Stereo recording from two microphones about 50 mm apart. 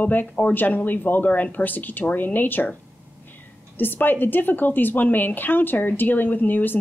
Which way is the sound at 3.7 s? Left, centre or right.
Left.